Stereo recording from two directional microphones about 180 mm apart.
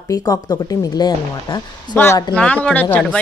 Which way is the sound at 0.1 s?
20° left (ahead or behind).